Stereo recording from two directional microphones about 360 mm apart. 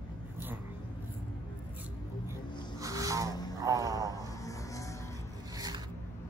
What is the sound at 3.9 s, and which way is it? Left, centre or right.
Vehicle, centre.